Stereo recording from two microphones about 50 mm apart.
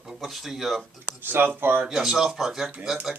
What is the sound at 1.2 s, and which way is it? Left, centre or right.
Speech, right.